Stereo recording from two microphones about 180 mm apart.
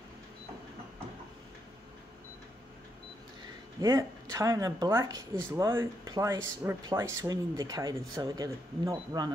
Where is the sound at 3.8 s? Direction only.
15° right (ahead or behind).